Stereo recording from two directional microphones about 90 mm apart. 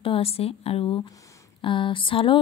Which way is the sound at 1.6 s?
70° left (ahead or behind).